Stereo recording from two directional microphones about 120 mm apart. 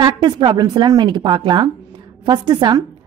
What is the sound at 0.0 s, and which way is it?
A woman's voice, 40° right (ahead or behind).